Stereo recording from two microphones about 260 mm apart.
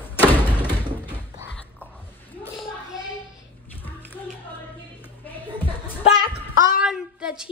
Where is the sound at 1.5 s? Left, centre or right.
Centre.